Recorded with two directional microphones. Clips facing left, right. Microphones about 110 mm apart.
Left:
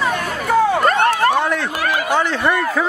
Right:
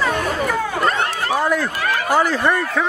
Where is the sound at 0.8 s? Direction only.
55° left (ahead or behind).